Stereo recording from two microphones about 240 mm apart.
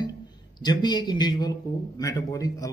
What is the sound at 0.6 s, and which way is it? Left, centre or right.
A man's voice, centre.